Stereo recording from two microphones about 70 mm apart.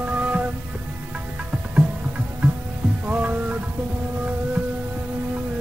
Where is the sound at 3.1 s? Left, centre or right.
Right.